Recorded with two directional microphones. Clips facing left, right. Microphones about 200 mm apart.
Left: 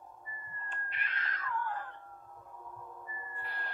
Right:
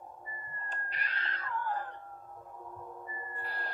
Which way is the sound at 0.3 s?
40° right (ahead or behind).